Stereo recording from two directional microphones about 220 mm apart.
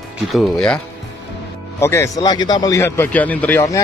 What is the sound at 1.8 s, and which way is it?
Speech, 10° left (ahead or behind).